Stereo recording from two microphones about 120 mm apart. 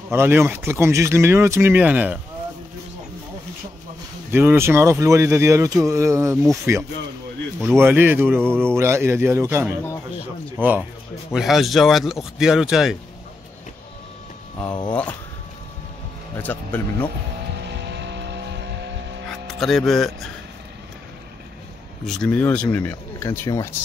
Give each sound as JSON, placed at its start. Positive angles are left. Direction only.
{"t": 0.1, "sound": "speech", "side_deg": -20}
{"t": 4.3, "sound": "speech", "side_deg": -20}
{"t": 11.3, "sound": "speech", "side_deg": 0}
{"t": 14.7, "sound": "speech", "side_deg": 35}
{"t": 16.3, "sound": "speech", "side_deg": 15}
{"t": 19.2, "sound": "speech", "side_deg": 0}
{"t": 22.0, "sound": "speech", "side_deg": 5}